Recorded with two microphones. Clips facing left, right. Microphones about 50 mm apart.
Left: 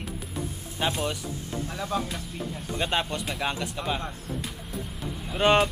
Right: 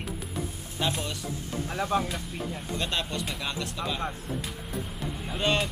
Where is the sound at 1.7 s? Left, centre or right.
Centre.